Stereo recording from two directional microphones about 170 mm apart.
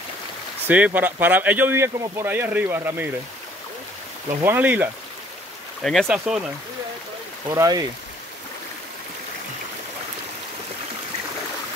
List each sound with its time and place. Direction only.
0.7 s speech: 10° right (ahead or behind)
4.4 s speech: 10° right (ahead or behind)
5.8 s speech: 5° left (ahead or behind)
7.4 s speech: 20° right (ahead or behind)